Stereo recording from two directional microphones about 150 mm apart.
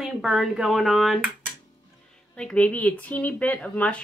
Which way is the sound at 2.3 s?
5° left (ahead or behind).